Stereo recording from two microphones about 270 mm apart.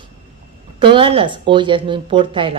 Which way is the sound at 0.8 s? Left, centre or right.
Centre.